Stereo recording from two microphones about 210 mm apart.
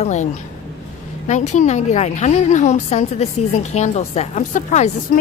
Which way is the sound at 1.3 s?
35° left (ahead or behind).